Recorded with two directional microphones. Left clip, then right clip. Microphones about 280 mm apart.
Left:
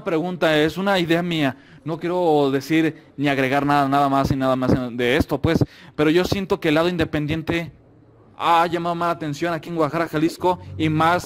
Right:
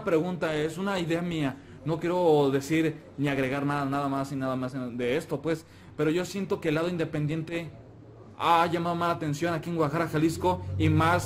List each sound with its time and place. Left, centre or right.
0.0 s a man's voice: left